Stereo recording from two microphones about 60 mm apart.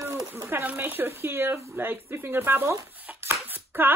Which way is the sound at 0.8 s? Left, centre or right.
Right.